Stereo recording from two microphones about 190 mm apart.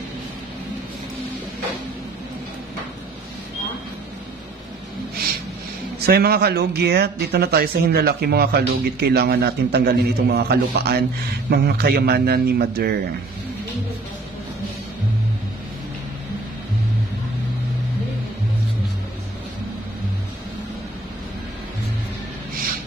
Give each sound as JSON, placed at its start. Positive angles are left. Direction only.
{"t": 5.9, "sound": "speech", "side_deg": -55}